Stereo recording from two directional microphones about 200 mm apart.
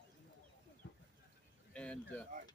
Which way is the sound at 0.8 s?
65° left (ahead or behind).